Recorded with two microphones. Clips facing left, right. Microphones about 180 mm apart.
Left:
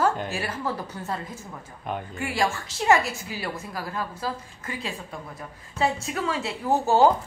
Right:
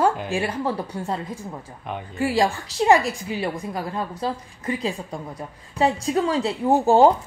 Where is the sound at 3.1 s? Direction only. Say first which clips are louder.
Right 6 dB; 20° right (ahead or behind).